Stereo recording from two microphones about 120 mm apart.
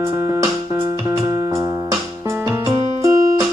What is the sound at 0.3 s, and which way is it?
Music, 25° right (ahead or behind).